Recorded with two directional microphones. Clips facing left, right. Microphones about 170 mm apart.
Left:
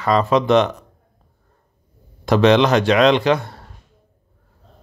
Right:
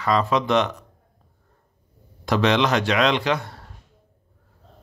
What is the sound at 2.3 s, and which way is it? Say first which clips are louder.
Speech: left 6 dB; 25° left (ahead or behind).